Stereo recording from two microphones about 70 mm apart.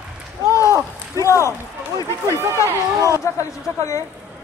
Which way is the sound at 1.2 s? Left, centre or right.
Left.